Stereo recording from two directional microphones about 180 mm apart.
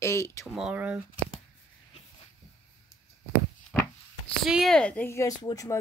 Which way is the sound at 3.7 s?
5° left (ahead or behind).